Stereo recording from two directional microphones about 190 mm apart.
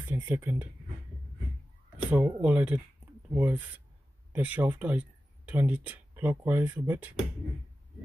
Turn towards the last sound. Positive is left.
turn(degrees=-10)  # may be behind; listen again after turning